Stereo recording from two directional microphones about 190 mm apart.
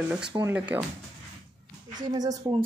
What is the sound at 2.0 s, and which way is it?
Speech, 20° right (ahead or behind).